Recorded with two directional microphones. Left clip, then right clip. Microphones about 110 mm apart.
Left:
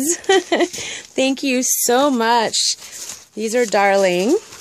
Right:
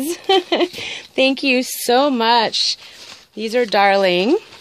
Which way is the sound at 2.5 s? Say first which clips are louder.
Right 1 dB; 35° left (ahead or behind).